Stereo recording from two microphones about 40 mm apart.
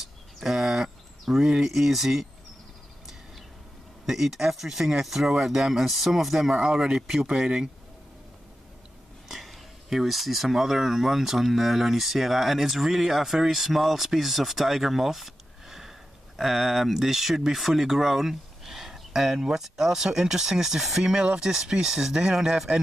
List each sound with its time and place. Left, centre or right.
0.0 s a sound: centre
4.0 s speech: centre
9.3 s speech: centre